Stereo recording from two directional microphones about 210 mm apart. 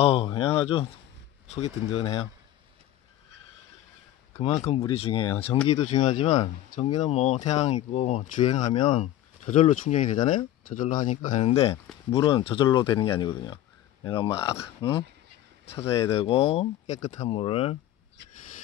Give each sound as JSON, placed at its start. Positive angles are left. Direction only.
{"t": 0.0, "sound": "speech", "side_deg": 30}
{"t": 4.6, "sound": "speech", "side_deg": 30}
{"t": 16.1, "sound": "speech", "side_deg": 25}